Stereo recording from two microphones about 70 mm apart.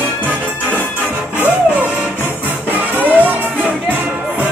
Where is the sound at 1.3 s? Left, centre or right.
Right.